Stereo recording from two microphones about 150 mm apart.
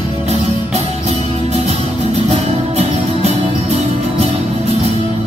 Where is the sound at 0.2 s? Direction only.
45° right (ahead or behind).